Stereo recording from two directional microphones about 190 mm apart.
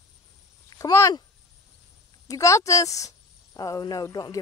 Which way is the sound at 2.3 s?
15° left (ahead or behind).